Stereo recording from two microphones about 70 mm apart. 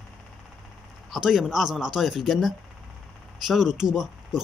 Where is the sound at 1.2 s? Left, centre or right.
Centre.